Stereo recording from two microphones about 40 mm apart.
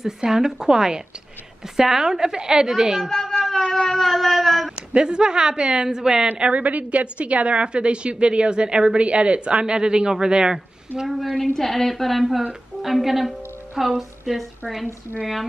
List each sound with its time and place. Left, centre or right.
0.0 s a woman's voice: centre
3.0 s speech: centre
3.4 s a sound: centre
4.7 s a woman's voice: right
6.5 s a woman's voice: right; by 10.6 s centre
11.1 s a woman's voice: centre